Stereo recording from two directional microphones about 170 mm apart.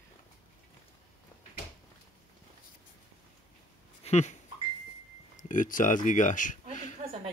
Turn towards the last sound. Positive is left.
turn(degrees=50)  # may be behind; listen again after turning